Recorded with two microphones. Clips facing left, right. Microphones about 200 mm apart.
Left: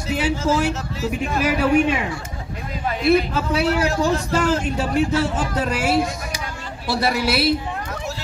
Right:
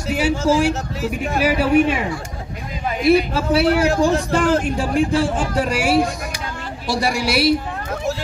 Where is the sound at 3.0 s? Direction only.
10° right (ahead or behind).